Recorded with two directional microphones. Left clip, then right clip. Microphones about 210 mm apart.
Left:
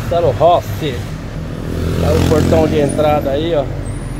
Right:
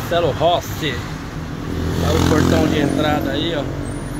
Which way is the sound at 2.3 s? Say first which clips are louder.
Left 6 dB; 15° left (ahead or behind).